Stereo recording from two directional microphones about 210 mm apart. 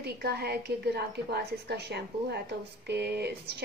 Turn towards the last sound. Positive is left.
turn(degrees=-50)  # may be behind; listen again after turning